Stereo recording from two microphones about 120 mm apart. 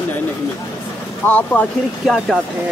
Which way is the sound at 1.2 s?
15° left (ahead or behind).